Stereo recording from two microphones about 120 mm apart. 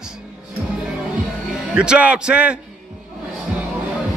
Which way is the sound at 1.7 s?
5° right (ahead or behind).